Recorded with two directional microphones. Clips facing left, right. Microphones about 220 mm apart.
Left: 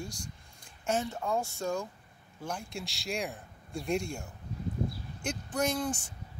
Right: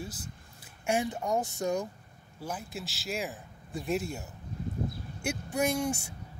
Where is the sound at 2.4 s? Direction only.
5° right (ahead or behind).